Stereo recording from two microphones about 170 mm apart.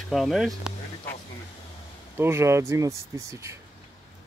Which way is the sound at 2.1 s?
15° right (ahead or behind).